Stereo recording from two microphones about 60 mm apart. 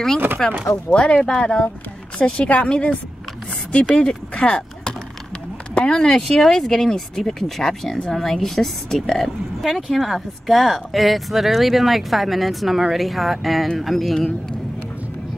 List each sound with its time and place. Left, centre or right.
0.4 s a woman's voice: centre
5.9 s a woman's voice: centre